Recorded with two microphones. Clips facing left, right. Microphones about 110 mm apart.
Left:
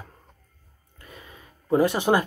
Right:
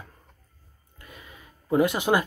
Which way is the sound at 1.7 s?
30° left (ahead or behind).